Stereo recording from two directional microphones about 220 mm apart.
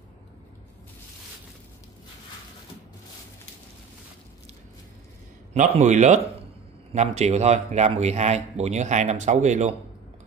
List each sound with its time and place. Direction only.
5.5 s speech: 35° right (ahead or behind)